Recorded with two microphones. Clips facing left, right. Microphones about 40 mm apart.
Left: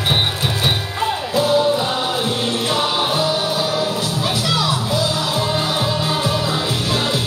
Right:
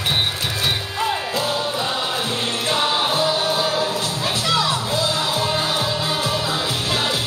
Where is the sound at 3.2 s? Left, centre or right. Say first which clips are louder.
Left 1 dB; right.